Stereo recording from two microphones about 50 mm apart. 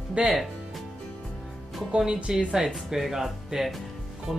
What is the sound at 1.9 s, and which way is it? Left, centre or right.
Speech, centre.